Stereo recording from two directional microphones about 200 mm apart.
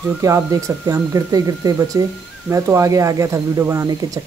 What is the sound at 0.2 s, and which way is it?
Speech, 15° right (ahead or behind).